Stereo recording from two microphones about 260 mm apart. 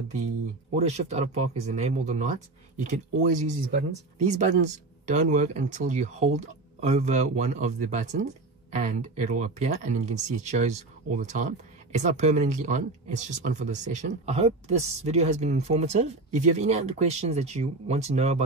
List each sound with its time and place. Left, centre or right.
0.7 s speech: right